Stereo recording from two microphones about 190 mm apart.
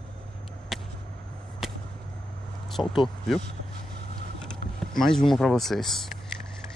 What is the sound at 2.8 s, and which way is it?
Speech, centre (ahead or behind).